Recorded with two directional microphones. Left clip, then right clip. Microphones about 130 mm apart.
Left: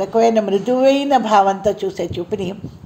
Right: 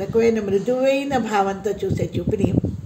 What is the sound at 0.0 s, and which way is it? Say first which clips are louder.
A woman's voice: left 4 dB; 20° left (ahead or behind).